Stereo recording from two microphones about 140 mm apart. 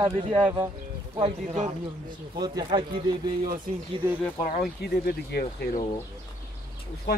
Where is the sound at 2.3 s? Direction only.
30° right (ahead or behind).